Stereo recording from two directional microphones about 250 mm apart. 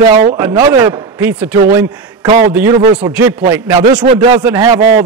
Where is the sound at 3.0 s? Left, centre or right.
Centre.